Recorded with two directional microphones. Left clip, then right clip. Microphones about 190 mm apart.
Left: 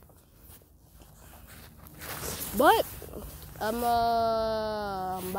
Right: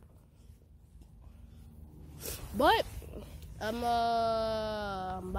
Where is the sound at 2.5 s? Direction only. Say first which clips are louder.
Left 5 dB; 10° left (ahead or behind).